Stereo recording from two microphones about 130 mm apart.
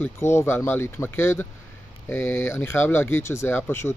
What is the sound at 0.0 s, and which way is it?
Speech, 20° left (ahead or behind).